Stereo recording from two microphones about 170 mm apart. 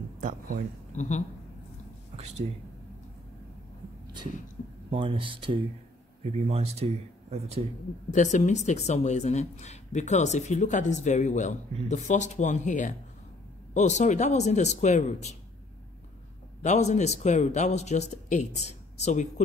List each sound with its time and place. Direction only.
0.2 s speech: 50° right (ahead or behind)
0.9 s speech: 45° left (ahead or behind)
2.1 s speech: 40° right (ahead or behind)
4.9 s speech: 30° right (ahead or behind)
8.1 s speech: 45° left (ahead or behind)
16.6 s speech: 45° left (ahead or behind)